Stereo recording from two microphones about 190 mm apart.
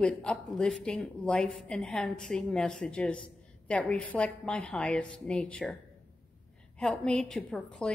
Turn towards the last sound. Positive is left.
turn(degrees=5)  # may be behind; listen again after turning